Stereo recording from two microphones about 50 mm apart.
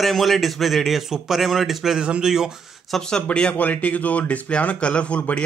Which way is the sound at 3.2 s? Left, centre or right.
Left.